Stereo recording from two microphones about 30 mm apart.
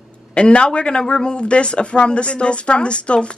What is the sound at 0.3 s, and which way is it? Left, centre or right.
Speech, left.